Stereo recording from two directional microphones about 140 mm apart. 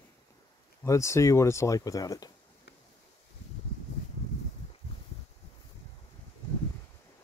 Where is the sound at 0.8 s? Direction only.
20° left (ahead or behind).